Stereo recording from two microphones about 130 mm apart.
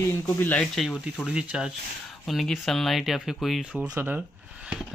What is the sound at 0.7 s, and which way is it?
Speech, 5° right (ahead or behind).